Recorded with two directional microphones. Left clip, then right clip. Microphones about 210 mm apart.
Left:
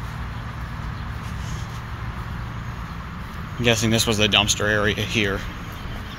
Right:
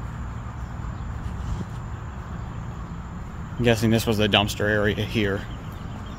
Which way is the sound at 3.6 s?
25° right (ahead or behind).